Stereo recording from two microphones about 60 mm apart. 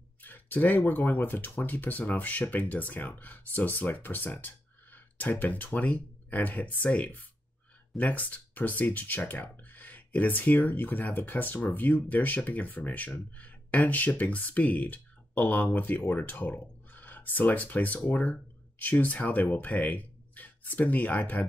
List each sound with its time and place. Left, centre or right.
0.2 s speech: left
18.3 s a sound: left
19.2 s speech: left